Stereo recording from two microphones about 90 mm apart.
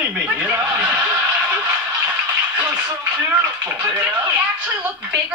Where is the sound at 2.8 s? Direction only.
20° right (ahead or behind).